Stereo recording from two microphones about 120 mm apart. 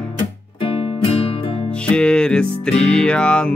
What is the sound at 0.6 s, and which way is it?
Music, 50° left (ahead or behind).